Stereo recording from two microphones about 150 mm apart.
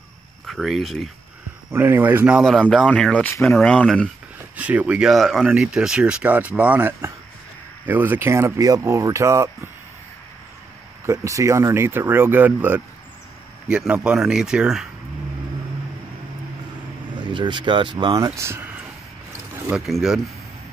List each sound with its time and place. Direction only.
0.5 s speech: centre (ahead or behind)
1.7 s speech: 15° right (ahead or behind); by 4.1 s 5° left (ahead or behind)
4.6 s speech: 10° right (ahead or behind)
11.1 s speech: 20° right (ahead or behind); by 14.9 s 5° right (ahead or behind)
17.1 s speech: 30° right (ahead or behind)
19.7 s speech: 5° right (ahead or behind)